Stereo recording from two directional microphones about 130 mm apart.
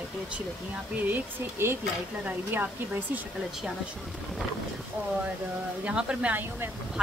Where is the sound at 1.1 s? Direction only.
20° right (ahead or behind).